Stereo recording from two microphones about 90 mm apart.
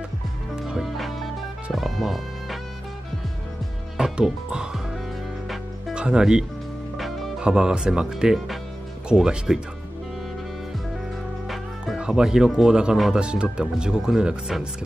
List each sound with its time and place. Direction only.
0.6 s music: 5° right (ahead or behind)
3.9 s music: 5° right (ahead or behind)
5.9 s speech: 10° right (ahead or behind)
11.4 s speech: centre (ahead or behind)